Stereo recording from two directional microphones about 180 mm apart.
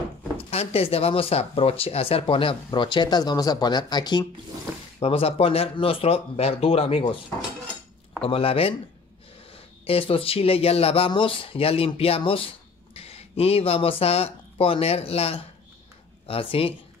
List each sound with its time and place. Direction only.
0.5 s speech: 35° left (ahead or behind)
8.2 s speech: 30° left (ahead or behind)